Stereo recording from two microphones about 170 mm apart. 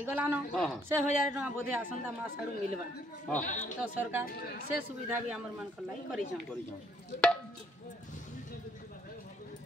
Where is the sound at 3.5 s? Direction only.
45° left (ahead or behind).